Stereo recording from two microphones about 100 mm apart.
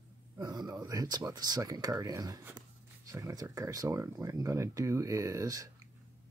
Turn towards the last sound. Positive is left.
turn(degrees=-35)  # may be behind; listen again after turning